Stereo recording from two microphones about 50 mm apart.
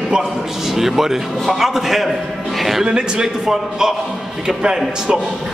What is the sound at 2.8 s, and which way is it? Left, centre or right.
Speech, centre.